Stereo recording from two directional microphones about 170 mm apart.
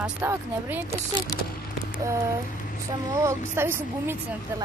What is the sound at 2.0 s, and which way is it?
A woman's voice, 15° right (ahead or behind).